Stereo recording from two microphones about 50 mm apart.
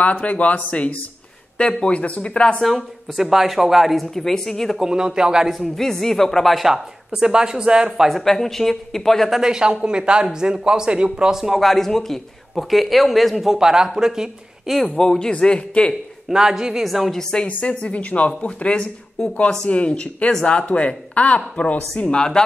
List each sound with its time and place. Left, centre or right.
0.0 s speech: left
2.6 s speech: centre
4.7 s speech: centre
5.5 s a woman's voice: centre
7.1 s speech: centre
8.1 s a woman's voice: centre
9.4 s speech: centre
13.6 s speech: centre
14.9 s a woman's voice: centre
16.3 s speech: centre
17.2 s a woman's voice: centre
17.5 s a woman's voice: left